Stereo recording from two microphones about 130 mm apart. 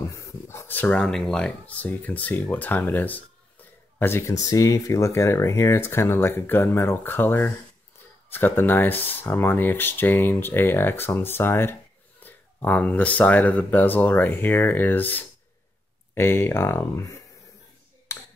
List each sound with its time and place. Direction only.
0.1 s speech: 20° left (ahead or behind)
12.2 s a sound: 15° left (ahead or behind)
13.2 s speech: 10° left (ahead or behind)